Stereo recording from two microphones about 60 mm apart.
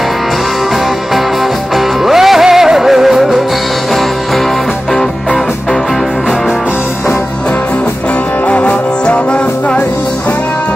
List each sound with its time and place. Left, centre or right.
2.0 s music: centre
8.5 s music: left